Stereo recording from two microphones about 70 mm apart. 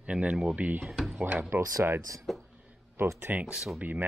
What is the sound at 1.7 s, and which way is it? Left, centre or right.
Speech, right.